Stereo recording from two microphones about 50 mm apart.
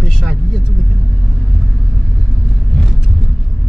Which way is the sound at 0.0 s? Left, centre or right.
Centre.